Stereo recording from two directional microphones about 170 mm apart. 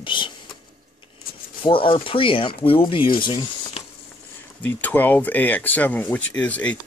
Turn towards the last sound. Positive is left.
turn(degrees=10)  # may be behind; listen again after turning